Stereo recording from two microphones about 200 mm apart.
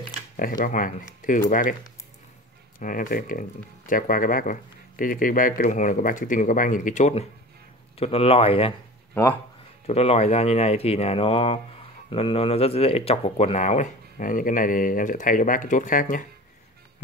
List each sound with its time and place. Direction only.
0.4 s speech: 45° left (ahead or behind)
2.8 s speech: 40° left (ahead or behind)
9.1 s speech: 10° left (ahead or behind)
9.8 s speech: 30° left (ahead or behind)